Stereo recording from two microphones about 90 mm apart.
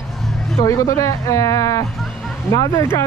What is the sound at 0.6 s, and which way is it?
Speech, 40° left (ahead or behind).